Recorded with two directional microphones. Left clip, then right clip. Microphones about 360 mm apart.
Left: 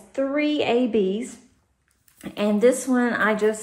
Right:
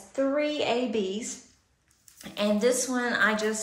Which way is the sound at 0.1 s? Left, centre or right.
Left.